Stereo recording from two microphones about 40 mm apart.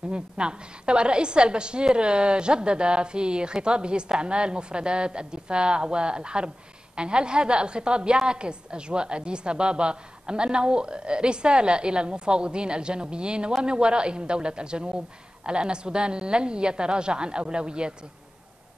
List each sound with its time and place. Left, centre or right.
0.1 s a woman's voice: right